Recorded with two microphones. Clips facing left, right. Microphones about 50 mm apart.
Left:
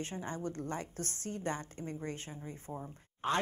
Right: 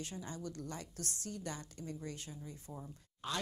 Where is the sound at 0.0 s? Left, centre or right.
Left.